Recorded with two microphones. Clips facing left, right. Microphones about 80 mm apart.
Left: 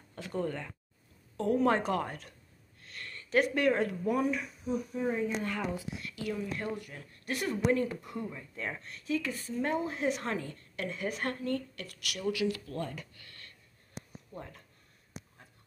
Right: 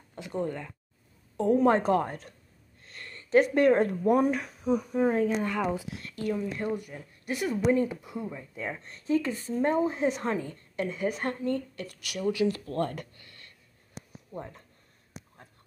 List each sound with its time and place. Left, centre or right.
0.1 s speech: centre; by 4.4 s right
4.4 s speech: right
6.0 s speech: right
6.3 s speech: right
8.8 s speech: right
12.8 s speech: right
13.1 s a sound: right
14.3 s speech: right